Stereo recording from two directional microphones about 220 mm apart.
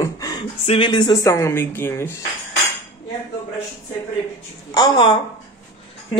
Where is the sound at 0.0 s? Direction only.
15° left (ahead or behind).